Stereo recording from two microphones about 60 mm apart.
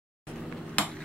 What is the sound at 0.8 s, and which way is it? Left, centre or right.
Hammer, left.